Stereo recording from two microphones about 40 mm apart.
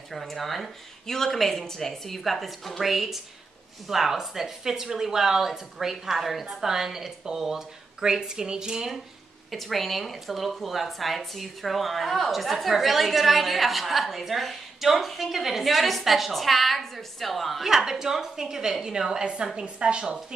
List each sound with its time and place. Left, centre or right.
0.1 s a woman's voice: centre
9.5 s a woman's voice: centre
17.6 s a woman's voice: centre